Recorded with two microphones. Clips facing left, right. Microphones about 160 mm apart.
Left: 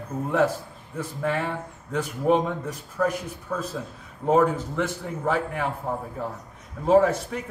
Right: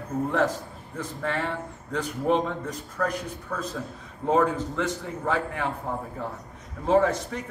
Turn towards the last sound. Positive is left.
turn(degrees=10)  # may be behind; listen again after turning